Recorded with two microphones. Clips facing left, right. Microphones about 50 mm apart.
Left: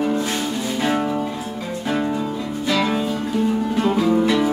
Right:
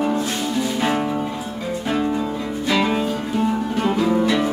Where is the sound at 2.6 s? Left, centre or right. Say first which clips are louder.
Right 1 dB; centre.